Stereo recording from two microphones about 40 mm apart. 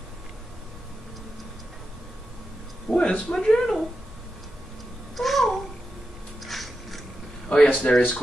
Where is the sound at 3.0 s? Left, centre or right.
Left.